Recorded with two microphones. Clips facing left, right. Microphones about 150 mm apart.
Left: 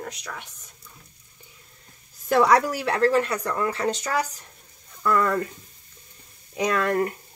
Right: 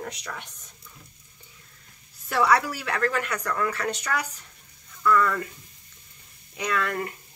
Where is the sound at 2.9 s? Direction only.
30° left (ahead or behind).